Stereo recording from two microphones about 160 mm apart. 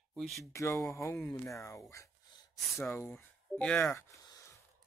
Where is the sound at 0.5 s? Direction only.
20° left (ahead or behind).